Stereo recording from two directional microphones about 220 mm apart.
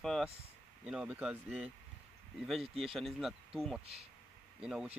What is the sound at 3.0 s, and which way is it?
Speech, centre (ahead or behind).